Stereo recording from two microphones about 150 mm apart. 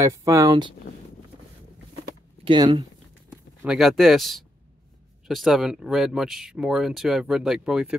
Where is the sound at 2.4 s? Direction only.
35° right (ahead or behind).